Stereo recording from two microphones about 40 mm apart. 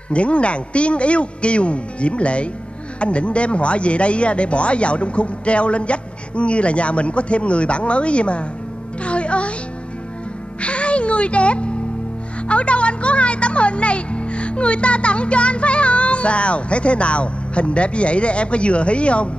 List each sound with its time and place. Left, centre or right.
0.1 s speech: left
9.0 s music: left
10.6 s music: left
12.4 s speech: left